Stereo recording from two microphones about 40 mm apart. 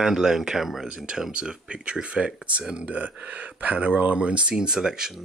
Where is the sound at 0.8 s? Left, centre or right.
Right.